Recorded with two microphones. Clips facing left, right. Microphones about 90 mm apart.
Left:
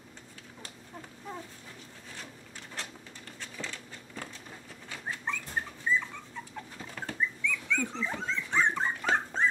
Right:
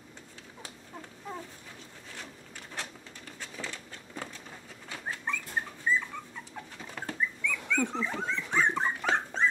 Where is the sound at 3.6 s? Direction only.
15° right (ahead or behind).